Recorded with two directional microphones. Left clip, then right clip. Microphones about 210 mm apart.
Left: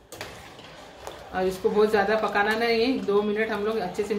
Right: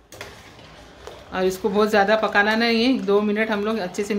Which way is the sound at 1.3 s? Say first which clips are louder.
Right 3 dB; 45° right (ahead or behind).